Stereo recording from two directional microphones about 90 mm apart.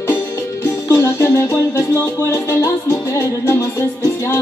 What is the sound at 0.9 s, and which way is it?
Music, 30° left (ahead or behind).